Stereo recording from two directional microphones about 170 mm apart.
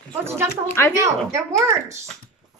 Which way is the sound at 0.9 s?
20° right (ahead or behind).